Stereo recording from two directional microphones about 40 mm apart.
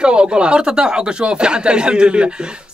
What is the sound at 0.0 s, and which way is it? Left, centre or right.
Speech, right.